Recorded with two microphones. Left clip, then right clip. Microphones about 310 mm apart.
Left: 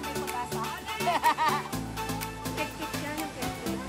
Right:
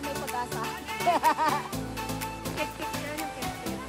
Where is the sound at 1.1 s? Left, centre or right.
Left.